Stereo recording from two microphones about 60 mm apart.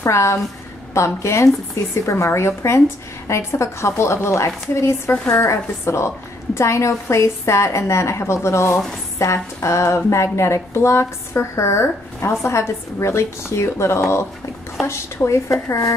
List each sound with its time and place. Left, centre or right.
0.0 s a woman's voice: left